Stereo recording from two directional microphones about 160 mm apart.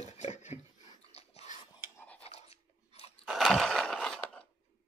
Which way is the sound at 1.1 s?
40° left (ahead or behind).